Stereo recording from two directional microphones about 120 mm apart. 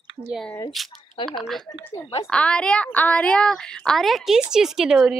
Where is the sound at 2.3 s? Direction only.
10° left (ahead or behind).